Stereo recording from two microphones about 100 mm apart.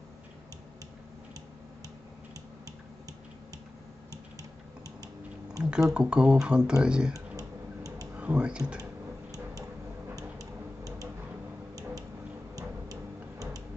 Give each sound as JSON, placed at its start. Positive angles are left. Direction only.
{"t": 5.6, "sound": "speech", "side_deg": -5}
{"t": 7.2, "sound": "tick-tock", "side_deg": -35}
{"t": 8.2, "sound": "speech", "side_deg": -10}
{"t": 10.4, "sound": "tick-tock", "side_deg": -35}
{"t": 12.5, "sound": "tick-tock", "side_deg": -35}